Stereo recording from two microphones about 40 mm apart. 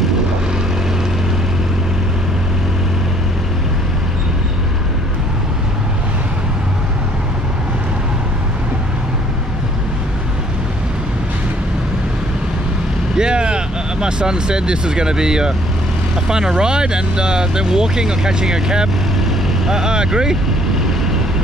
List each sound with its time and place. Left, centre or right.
13.1 s vehicle: right
16.3 s speech: centre